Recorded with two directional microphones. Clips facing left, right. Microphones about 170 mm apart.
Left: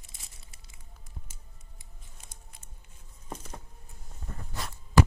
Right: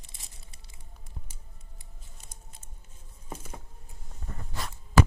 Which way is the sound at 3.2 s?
5° right (ahead or behind).